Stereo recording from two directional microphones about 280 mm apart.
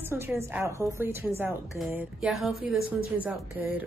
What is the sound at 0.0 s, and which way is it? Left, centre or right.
A woman's voice, centre.